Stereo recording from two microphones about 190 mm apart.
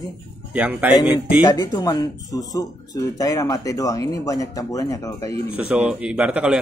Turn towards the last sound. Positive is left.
turn(degrees=-5)  # may be behind; listen again after turning